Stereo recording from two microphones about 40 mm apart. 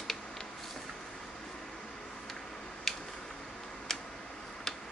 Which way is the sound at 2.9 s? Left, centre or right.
Centre.